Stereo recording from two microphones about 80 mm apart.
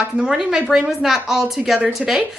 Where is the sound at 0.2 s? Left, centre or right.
Centre.